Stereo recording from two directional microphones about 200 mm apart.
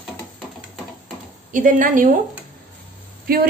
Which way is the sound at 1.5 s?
40° right (ahead or behind).